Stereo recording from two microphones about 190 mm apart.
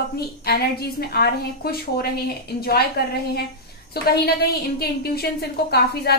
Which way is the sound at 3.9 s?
55° left (ahead or behind).